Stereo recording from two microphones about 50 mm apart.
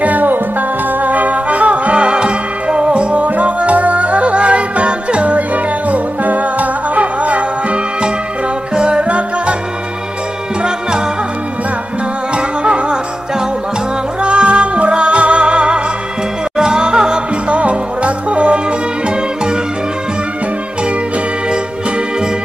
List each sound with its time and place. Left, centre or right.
0.0 s music: right
12.4 s music: centre
14.2 s music: right